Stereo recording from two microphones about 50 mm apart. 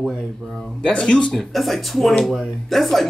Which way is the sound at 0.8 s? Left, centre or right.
Centre.